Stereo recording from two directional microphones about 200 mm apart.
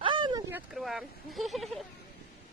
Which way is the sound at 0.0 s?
25° right (ahead or behind).